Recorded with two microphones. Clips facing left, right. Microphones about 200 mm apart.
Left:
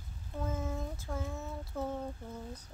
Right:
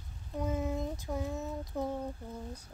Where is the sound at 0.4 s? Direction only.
15° right (ahead or behind).